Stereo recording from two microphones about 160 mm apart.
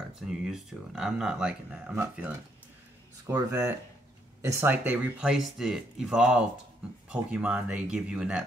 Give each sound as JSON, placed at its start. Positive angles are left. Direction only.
{"t": 0.3, "sound": "speech", "side_deg": -5}
{"t": 3.3, "sound": "speech", "side_deg": -20}